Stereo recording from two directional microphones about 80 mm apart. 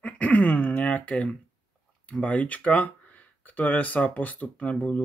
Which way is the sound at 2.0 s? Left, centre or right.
Centre.